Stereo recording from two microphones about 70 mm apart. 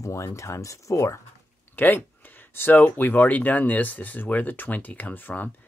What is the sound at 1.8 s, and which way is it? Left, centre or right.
Speech, left.